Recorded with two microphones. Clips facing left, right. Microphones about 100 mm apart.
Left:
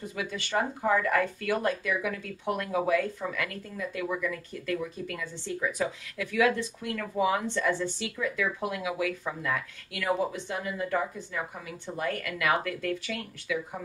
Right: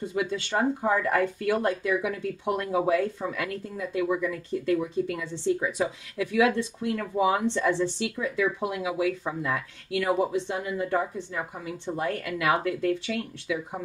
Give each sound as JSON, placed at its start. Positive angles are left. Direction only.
{"t": 0.0, "sound": "speech", "side_deg": -25}